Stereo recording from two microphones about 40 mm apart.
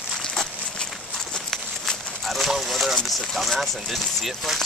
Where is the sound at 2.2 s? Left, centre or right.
Centre.